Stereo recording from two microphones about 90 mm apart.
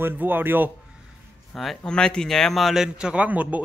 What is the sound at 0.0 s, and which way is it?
Speech, 20° right (ahead or behind).